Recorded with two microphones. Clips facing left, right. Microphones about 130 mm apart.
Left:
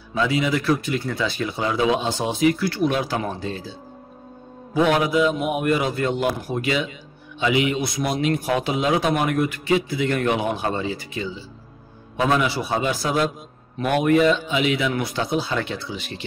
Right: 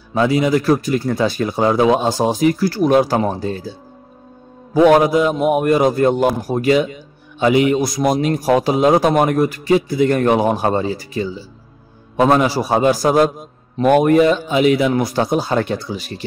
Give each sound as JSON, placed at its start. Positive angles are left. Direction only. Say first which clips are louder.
{"t": 0.1, "sound": "a man's voice", "louder": "right 6 dB", "side_deg": -45}
{"t": 4.7, "sound": "a man's voice", "louder": "right 7 dB", "side_deg": -45}